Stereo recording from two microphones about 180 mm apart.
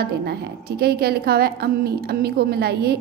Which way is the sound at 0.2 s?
60° right (ahead or behind).